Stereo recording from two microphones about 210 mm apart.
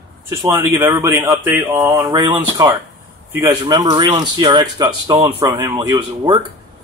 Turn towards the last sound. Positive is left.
turn(degrees=-20)  # may be behind; listen again after turning